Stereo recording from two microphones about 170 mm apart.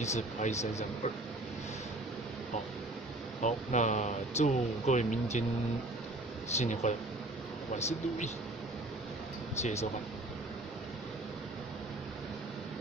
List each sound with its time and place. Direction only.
0.0 s speech: 40° left (ahead or behind)
3.4 s speech: 45° left (ahead or behind)
6.5 s speech: 45° left (ahead or behind)
9.6 s speech: 40° left (ahead or behind)